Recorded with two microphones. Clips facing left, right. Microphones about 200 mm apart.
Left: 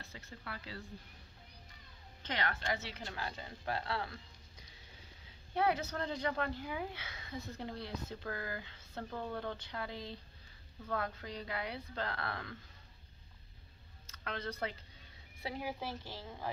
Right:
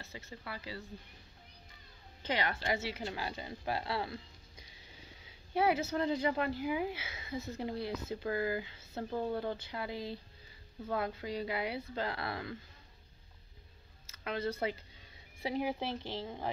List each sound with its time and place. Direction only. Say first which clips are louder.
0.0 s speech: right 3 dB; centre (ahead or behind)
2.2 s speech: right 3 dB; 10° right (ahead or behind)
5.5 s speech: right 3 dB; 10° right (ahead or behind)
14.0 s a sound: right 6 dB; 5° right (ahead or behind)
15.4 s speech: right 6 dB; 20° right (ahead or behind)